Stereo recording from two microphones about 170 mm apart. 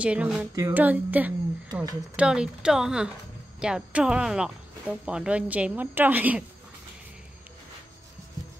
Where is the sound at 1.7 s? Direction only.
25° right (ahead or behind).